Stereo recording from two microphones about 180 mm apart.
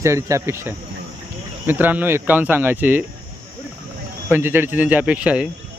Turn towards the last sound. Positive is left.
turn(degrees=-5)  # may be behind; listen again after turning